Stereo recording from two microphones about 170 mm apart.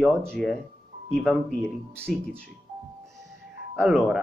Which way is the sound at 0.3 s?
Centre (ahead or behind).